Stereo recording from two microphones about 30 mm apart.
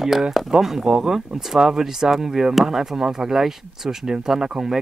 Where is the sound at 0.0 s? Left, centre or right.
Centre.